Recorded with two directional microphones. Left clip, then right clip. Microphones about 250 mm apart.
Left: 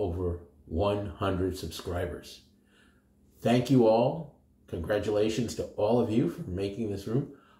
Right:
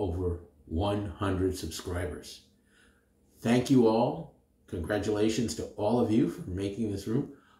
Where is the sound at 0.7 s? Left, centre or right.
Centre.